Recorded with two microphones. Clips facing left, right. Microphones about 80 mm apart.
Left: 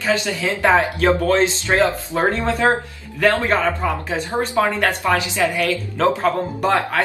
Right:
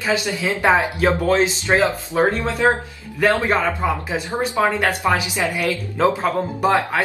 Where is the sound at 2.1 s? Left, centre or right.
Centre.